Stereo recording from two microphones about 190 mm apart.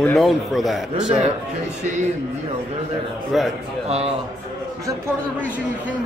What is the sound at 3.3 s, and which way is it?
Speech, centre (ahead or behind).